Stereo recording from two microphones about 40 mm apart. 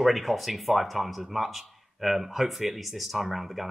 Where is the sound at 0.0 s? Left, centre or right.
Centre.